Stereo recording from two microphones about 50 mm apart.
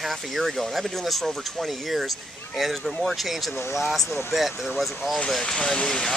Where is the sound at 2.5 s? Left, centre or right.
Centre.